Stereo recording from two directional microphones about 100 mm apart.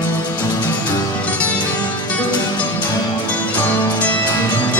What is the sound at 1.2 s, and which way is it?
Music, 15° left (ahead or behind).